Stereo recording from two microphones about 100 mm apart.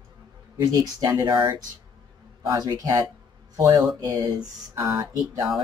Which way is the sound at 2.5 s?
40° right (ahead or behind).